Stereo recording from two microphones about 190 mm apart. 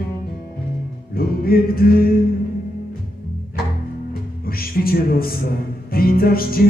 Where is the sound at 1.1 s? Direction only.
50° left (ahead or behind).